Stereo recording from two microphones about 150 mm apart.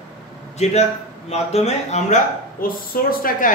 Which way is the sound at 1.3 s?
45° left (ahead or behind).